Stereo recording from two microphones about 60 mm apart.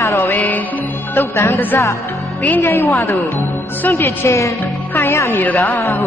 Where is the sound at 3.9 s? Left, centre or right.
Left.